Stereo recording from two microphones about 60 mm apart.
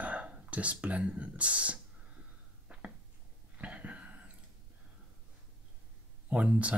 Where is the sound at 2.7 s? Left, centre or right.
Centre.